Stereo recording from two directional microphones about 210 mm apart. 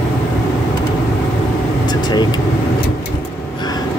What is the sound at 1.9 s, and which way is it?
Speech, 20° left (ahead or behind).